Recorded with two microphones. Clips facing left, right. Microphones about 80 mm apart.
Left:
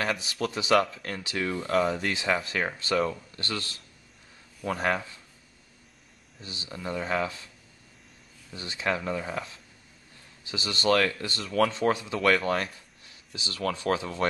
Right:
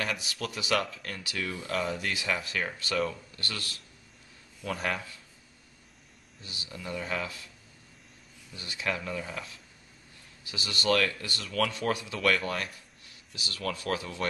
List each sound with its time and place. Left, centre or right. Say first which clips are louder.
0.0 s speech: left 5 dB; left
1.7 s speech: left 7 dB; left
2.1 s speech: left 4 dB; left
4.9 s speech: left 5 dB; left
6.4 s speech: left 4 dB; left
8.5 s speech: left 4 dB; left
10.4 s speech: left 4 dB; left